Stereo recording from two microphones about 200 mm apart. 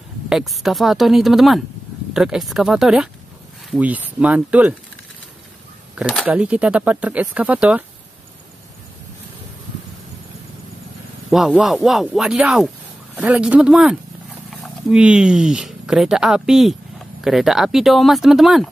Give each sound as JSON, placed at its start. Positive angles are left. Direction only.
{"t": 0.3, "sound": "speech", "side_deg": 0}
{"t": 5.9, "sound": "speech", "side_deg": -5}
{"t": 11.2, "sound": "speech", "side_deg": 0}